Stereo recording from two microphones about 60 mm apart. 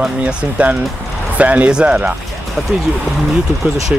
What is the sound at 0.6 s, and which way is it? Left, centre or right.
Speech, right.